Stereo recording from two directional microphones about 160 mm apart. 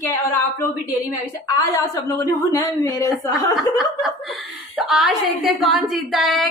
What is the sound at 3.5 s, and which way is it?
A woman's voice, centre (ahead or behind).